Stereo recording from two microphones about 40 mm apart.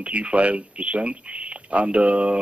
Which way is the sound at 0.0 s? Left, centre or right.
Right.